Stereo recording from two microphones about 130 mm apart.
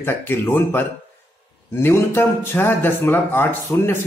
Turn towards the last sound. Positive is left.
turn(degrees=20)  # may be behind; listen again after turning